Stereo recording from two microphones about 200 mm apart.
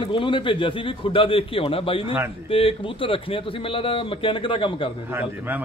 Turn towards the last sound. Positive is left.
turn(degrees=-10)  # may be behind; listen again after turning